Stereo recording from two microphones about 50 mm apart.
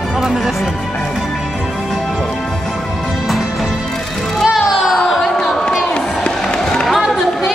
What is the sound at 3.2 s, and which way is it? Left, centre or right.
Music, centre.